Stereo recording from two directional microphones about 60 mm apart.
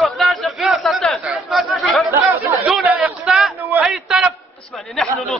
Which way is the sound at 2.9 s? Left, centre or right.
Right.